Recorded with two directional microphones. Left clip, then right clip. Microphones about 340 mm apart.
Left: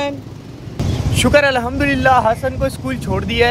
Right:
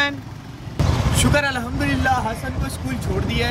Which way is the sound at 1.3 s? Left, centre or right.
Centre.